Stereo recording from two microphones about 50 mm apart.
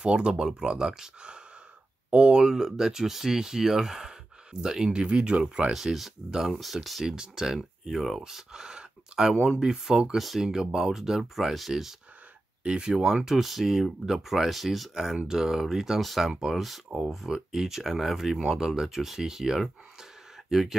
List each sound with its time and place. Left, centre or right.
0.0 s speech: centre
5.7 s speech: centre
7.1 s speech: centre
12.6 s speech: centre
15.1 s speech: centre
16.3 s speech: centre